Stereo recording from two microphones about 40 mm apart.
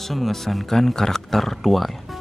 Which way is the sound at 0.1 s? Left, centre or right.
Centre.